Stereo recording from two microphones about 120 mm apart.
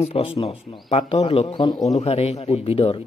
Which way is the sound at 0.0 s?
50° left (ahead or behind).